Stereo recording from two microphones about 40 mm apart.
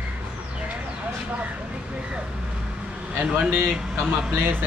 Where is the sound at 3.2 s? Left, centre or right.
Right.